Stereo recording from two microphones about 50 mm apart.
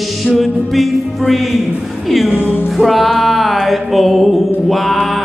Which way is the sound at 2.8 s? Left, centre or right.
Centre.